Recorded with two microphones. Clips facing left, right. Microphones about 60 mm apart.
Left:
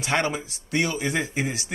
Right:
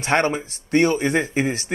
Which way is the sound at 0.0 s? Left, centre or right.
Right.